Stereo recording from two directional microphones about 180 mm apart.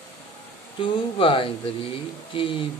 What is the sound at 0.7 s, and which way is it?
Speech, 30° left (ahead or behind).